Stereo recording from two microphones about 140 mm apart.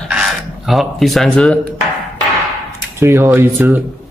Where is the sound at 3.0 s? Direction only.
20° right (ahead or behind).